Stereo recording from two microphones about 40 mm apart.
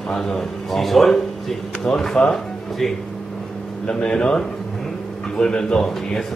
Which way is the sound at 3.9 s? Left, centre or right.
Left.